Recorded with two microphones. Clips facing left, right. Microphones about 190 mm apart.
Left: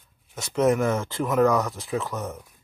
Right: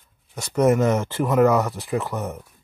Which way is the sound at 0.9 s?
15° right (ahead or behind).